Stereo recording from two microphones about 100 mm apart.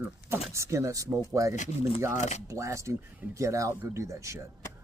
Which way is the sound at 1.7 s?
75° left (ahead or behind).